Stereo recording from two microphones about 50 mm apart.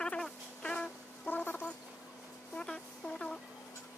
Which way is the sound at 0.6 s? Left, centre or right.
Centre.